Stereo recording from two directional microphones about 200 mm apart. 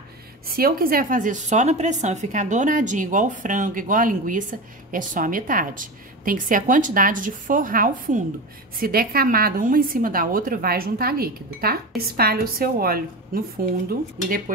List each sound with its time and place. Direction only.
0.5 s a woman's voice: 45° right (ahead or behind)